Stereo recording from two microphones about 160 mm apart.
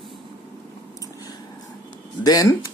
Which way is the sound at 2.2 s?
25° left (ahead or behind).